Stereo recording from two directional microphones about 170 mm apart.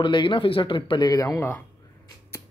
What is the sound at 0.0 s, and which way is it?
Speech, 30° left (ahead or behind).